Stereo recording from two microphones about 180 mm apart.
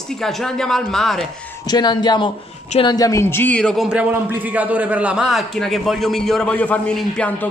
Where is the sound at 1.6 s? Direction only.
25° left (ahead or behind).